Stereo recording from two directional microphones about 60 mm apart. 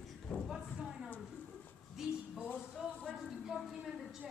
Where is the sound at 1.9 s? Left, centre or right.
Centre.